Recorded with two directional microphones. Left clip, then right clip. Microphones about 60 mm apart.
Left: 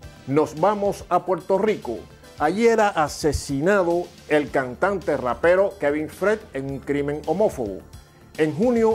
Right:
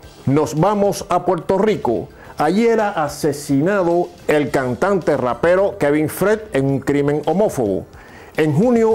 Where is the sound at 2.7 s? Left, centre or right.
Left.